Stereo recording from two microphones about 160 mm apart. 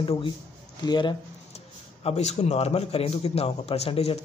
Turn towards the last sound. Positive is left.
turn(degrees=40)  # may be behind; listen again after turning